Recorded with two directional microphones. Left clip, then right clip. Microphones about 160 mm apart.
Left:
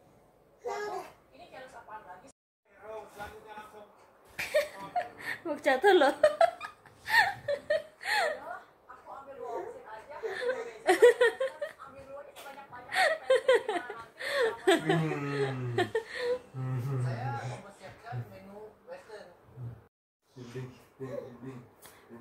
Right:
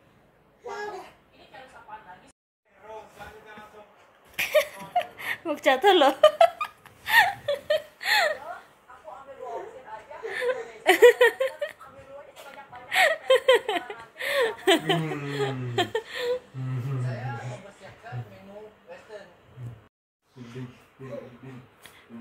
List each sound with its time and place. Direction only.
4.4 s a sound: 20° right (ahead or behind)
10.3 s laughter: 20° right (ahead or behind)
12.9 s chuckle: 15° right (ahead or behind)
13.5 s laughter: 15° right (ahead or behind)